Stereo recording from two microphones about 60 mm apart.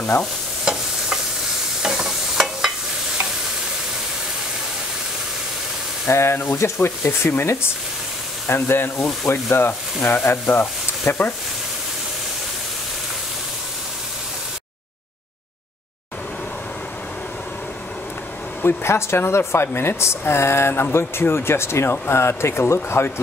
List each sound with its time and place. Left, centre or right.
1.8 s stir: centre
6.0 s speech: left
11.1 s speech: left
18.6 s speech: left